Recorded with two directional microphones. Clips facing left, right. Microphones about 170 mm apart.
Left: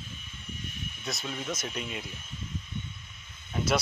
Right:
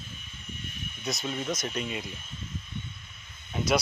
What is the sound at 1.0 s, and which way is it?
Speech, centre (ahead or behind).